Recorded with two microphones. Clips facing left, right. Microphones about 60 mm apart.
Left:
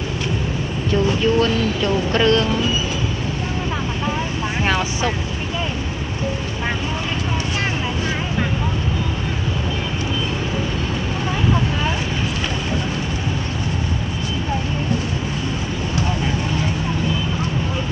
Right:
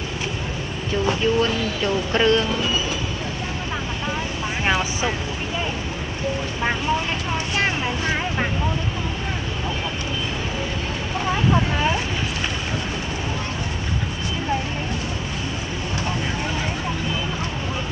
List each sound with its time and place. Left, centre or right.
1.0 s speech: centre
4.6 s speech: centre